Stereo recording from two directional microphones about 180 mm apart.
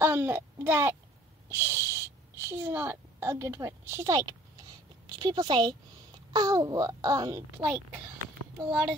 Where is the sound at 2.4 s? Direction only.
15° right (ahead or behind).